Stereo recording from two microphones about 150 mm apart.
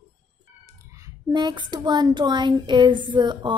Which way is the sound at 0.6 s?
25° right (ahead or behind).